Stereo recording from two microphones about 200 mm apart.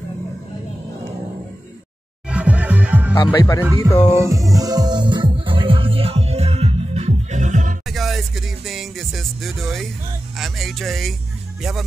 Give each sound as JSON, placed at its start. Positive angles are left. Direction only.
{"t": 2.2, "sound": "music", "side_deg": -5}
{"t": 3.3, "sound": "speech", "side_deg": 15}
{"t": 3.9, "sound": "music", "side_deg": -15}
{"t": 7.9, "sound": "music", "side_deg": 0}
{"t": 10.3, "sound": "speech", "side_deg": 0}